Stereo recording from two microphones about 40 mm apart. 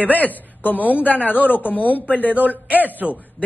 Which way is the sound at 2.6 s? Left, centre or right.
Right.